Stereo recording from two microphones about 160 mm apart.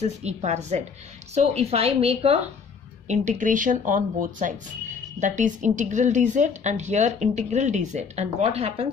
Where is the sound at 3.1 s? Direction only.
50° right (ahead or behind).